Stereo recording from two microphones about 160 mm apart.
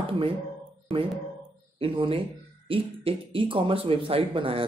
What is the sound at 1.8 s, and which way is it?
Speech, 35° right (ahead or behind).